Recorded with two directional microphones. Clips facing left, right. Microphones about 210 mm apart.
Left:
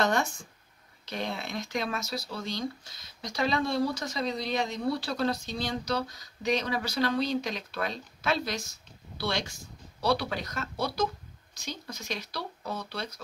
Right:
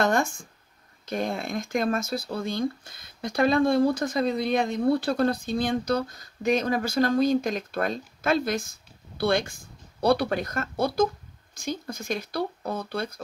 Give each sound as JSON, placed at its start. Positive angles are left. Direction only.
{"t": 0.0, "sound": "speech", "side_deg": -50}